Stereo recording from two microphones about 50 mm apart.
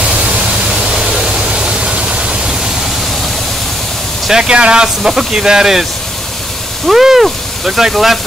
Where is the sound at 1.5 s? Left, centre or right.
Centre.